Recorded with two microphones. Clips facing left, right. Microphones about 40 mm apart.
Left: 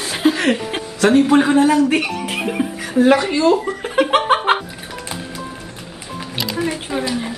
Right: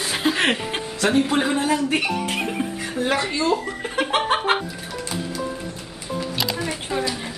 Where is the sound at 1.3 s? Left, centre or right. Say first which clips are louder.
Left 8 dB; centre.